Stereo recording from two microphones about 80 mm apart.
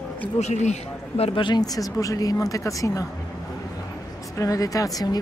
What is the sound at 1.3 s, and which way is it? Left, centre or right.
Speech, left.